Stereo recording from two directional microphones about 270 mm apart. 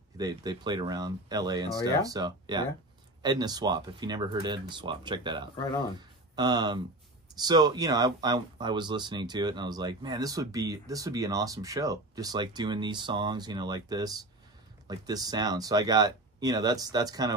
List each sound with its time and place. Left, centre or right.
0.2 s speech: centre